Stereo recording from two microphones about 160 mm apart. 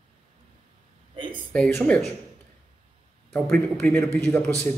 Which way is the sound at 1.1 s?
30° right (ahead or behind).